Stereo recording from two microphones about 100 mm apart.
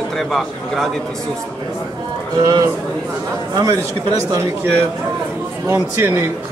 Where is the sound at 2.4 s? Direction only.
35° right (ahead or behind).